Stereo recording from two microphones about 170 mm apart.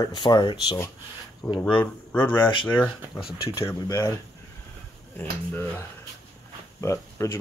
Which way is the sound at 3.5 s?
20° left (ahead or behind).